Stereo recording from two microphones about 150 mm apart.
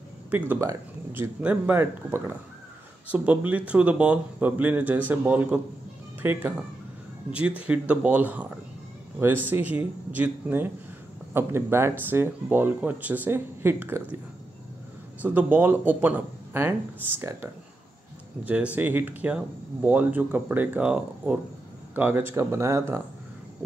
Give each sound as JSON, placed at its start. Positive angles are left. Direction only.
{"t": 0.3, "sound": "speech", "side_deg": -10}
{"t": 15.2, "sound": "speech", "side_deg": -10}